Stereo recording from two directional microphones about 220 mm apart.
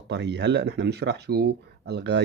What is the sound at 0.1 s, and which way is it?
Speech, 50° right (ahead or behind).